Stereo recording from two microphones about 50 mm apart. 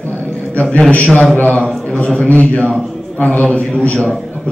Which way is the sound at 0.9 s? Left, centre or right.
Left.